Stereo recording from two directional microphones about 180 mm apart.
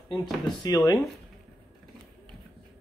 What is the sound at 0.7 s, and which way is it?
Speech, 20° left (ahead or behind).